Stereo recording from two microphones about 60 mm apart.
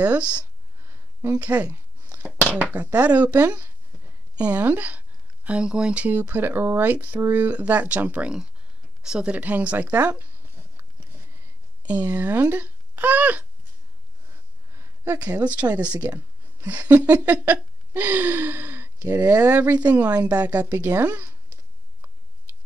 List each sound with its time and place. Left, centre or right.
0.0 s a child's voice: right
1.4 s a sound: right
2.5 s a child's voice: right
6.0 s a child's voice: right; by 9.4 s centre
9.4 s a child's voice: right
11.9 s a child's voice: right
15.4 s a child's voice: right
20.7 s speech: right
21.0 s a child's voice: right